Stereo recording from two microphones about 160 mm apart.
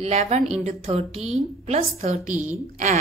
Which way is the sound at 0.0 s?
45° right (ahead or behind).